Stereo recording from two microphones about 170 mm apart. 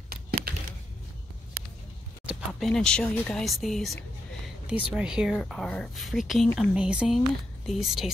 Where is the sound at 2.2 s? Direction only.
Centre (ahead or behind).